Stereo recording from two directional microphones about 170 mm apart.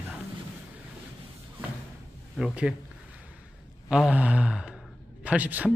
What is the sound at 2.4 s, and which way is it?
Sigh, 5° right (ahead or behind).